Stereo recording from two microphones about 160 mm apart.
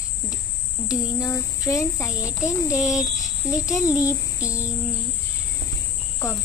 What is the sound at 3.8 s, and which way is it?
Speech, 20° left (ahead or behind).